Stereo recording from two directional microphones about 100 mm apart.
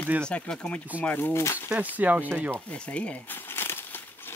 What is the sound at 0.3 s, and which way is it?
Speech, 10° left (ahead or behind).